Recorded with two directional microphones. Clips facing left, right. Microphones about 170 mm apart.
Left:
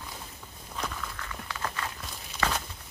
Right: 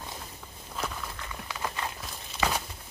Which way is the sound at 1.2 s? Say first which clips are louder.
Right 1 dB; 15° right (ahead or behind).